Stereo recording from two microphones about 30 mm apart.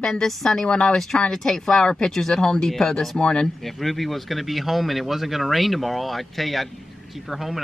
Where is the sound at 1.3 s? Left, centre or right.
Centre.